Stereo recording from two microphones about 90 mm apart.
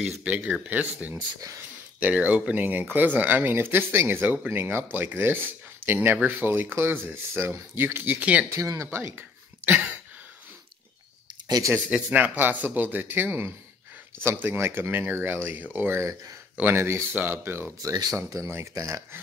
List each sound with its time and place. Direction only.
0.0 s speech: 15° right (ahead or behind)
8.5 s speech: 35° right (ahead or behind)
11.4 s speech: 45° right (ahead or behind)
11.9 s speech: 15° right (ahead or behind)
18.1 s speech: 35° right (ahead or behind)
18.8 s speech: 40° right (ahead or behind)